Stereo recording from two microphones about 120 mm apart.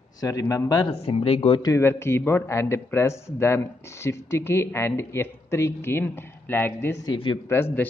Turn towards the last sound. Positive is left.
turn(degrees=20)  # may be behind; listen again after turning